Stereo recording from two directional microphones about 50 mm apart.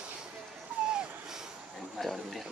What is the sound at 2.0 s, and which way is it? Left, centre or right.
Speech, centre.